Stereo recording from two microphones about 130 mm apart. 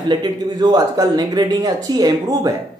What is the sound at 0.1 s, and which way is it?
Speech, 30° right (ahead or behind).